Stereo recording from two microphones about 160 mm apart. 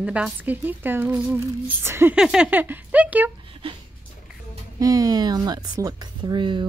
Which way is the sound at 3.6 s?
35° right (ahead or behind).